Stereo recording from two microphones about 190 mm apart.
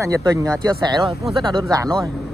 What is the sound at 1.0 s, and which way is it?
Speech, centre (ahead or behind).